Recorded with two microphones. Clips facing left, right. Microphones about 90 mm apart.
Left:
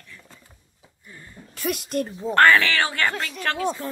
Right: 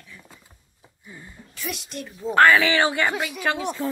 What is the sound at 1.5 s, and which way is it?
Speech, 50° left (ahead or behind).